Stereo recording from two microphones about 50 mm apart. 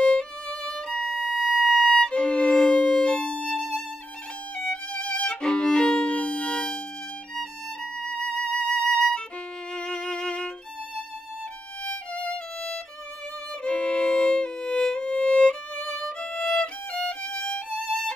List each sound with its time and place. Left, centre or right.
0.0 s violin: centre
2.0 s violin: centre
4.6 s violin: left
6.1 s music: left
8.0 s violin: left
11.8 s violin: left
13.7 s music: left
16.2 s violin: centre